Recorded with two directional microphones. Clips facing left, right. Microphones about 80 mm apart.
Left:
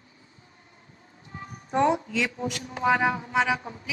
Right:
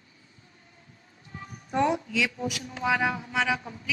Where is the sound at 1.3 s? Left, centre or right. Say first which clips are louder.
Left 2 dB; left.